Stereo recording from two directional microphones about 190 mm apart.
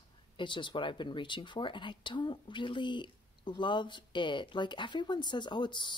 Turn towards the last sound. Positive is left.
turn(degrees=25)  # may be behind; listen again after turning